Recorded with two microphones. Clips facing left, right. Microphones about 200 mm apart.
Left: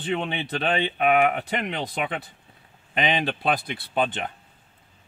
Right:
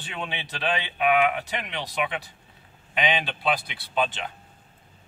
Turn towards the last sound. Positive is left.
turn(degrees=55)  # may be behind; listen again after turning